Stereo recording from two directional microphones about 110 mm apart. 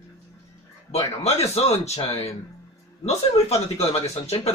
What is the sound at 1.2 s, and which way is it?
Speech, 75° left (ahead or behind).